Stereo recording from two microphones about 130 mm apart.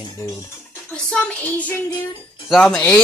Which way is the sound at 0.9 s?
10° left (ahead or behind).